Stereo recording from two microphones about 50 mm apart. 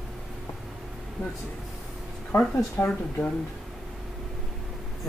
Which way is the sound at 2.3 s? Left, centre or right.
Left.